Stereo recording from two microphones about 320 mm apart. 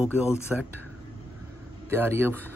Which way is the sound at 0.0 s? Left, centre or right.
Centre.